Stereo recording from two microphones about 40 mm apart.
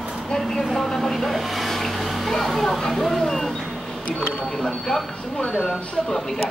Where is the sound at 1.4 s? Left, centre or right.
Centre.